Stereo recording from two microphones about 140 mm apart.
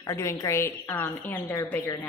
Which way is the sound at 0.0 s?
20° left (ahead or behind).